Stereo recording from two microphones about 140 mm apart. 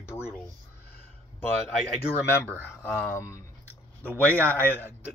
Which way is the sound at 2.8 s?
15° left (ahead or behind).